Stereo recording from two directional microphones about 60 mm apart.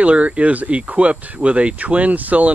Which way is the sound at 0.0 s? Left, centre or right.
Right.